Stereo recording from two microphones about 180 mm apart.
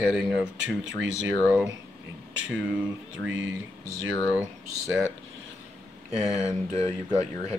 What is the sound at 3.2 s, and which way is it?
Speech, 90° right.